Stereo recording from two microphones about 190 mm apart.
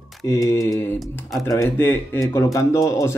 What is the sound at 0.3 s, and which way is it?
Speech, 15° left (ahead or behind).